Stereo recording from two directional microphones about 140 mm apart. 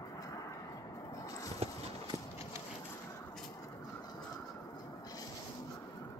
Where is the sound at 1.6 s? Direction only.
45° right (ahead or behind).